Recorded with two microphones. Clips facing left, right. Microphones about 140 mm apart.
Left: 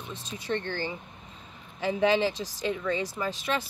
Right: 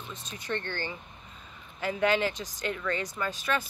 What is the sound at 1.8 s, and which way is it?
Speech, 25° left (ahead or behind).